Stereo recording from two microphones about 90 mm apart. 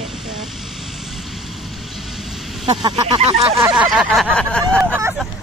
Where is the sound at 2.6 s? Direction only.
60° right (ahead or behind).